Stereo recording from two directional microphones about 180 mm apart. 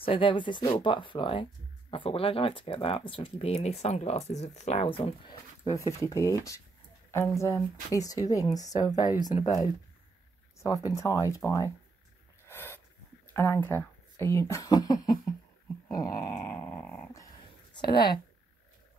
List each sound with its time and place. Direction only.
0.0 s speech: 30° left (ahead or behind)
5.6 s speech: 15° left (ahead or behind)
10.9 s speech: 15° left (ahead or behind)
12.4 s a sound: 10° left (ahead or behind)
13.3 s speech: 10° left (ahead or behind)
16.4 s dog: 10° left (ahead or behind)
17.7 s speech: 25° left (ahead or behind)